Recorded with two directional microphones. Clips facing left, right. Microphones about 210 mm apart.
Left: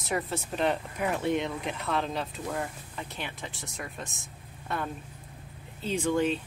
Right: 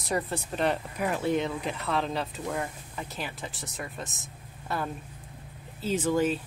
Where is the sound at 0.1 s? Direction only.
Centre (ahead or behind).